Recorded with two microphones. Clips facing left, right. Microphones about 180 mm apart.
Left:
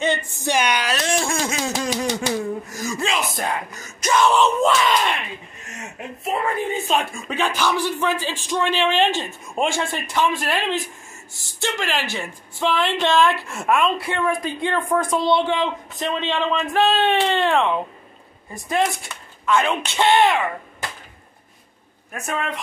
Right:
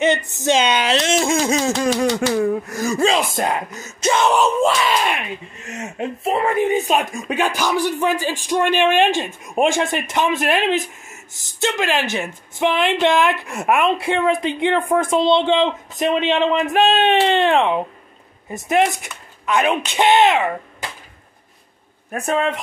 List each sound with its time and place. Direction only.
0.0 s speech: 20° right (ahead or behind)
1.8 s speech: 55° right (ahead or behind)
3.0 s speech: 30° right (ahead or behind)
4.4 s speech: 10° right (ahead or behind)
6.6 s speech: 15° right (ahead or behind)
22.1 s speech: 35° right (ahead or behind)